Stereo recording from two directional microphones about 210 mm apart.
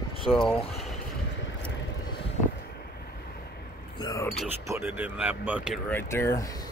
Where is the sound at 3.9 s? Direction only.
20° left (ahead or behind).